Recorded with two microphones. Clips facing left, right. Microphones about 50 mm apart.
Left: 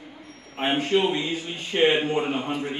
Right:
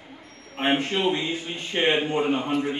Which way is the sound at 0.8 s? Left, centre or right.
Centre.